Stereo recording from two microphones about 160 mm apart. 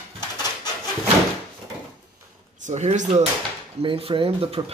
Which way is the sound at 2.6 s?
50° right (ahead or behind).